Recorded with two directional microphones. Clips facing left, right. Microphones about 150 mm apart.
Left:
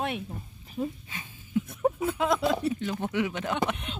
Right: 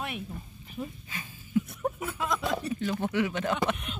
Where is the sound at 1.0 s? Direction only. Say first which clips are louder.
Right 1 dB; 25° left (ahead or behind).